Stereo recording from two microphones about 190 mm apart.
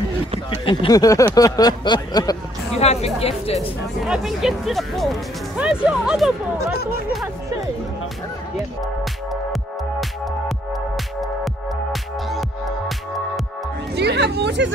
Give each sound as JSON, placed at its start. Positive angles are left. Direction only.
{"t": 0.7, "sound": "speech", "side_deg": 20}
{"t": 2.7, "sound": "music", "side_deg": 35}
{"t": 3.2, "sound": "speech", "side_deg": 30}
{"t": 4.0, "sound": "speech", "side_deg": 0}
{"t": 9.3, "sound": "music", "side_deg": 0}
{"t": 11.4, "sound": "music", "side_deg": 0}
{"t": 13.9, "sound": "music", "side_deg": -60}